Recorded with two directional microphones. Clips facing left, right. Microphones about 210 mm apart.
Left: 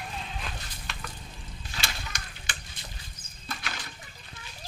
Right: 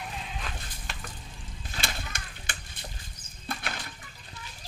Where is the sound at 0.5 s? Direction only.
50° right (ahead or behind).